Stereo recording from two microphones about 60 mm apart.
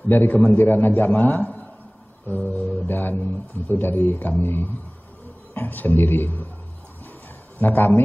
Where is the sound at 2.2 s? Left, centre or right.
Left.